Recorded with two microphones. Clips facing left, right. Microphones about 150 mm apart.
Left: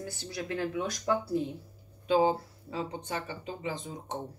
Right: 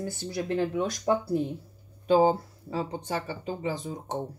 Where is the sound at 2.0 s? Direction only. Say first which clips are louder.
Right 4 dB; 40° right (ahead or behind).